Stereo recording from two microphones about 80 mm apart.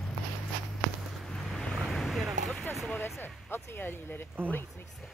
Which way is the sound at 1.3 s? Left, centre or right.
Centre.